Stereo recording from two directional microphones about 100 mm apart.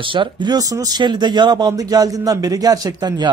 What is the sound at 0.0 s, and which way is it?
Speech, 55° right (ahead or behind).